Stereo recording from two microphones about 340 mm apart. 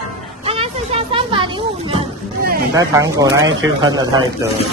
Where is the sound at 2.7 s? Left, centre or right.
Centre.